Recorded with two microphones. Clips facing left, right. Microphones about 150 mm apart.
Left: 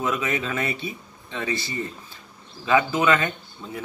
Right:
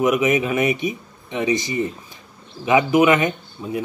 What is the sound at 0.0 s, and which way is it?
Speech, 15° right (ahead or behind).